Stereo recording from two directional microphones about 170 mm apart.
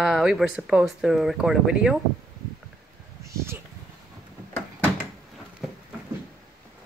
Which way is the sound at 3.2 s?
15° right (ahead or behind).